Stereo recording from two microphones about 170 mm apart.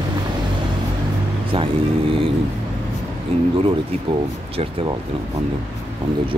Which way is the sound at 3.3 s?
35° right (ahead or behind).